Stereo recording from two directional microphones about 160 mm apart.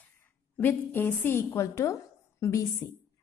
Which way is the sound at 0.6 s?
10° left (ahead or behind).